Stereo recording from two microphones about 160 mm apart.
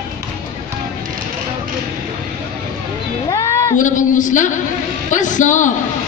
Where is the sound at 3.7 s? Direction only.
55° left (ahead or behind).